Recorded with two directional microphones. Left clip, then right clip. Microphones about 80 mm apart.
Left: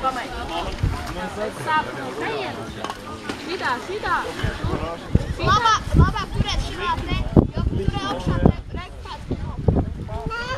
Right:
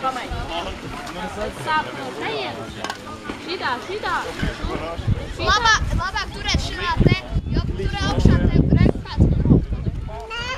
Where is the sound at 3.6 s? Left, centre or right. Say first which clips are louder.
Even; right.